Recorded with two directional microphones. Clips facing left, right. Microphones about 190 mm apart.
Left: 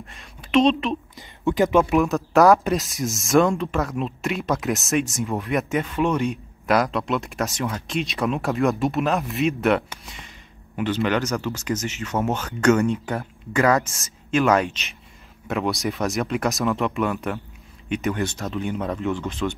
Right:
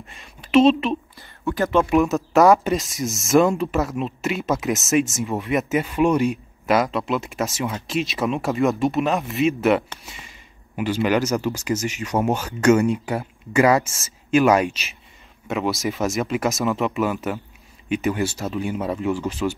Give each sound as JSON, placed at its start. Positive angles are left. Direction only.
{"t": 0.1, "sound": "a woman's voice", "side_deg": -5}
{"t": 1.1, "sound": "a sound", "side_deg": 20}
{"t": 1.9, "sound": "speech", "side_deg": 0}